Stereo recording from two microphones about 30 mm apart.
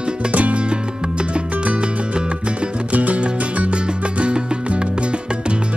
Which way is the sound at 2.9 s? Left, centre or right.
Right.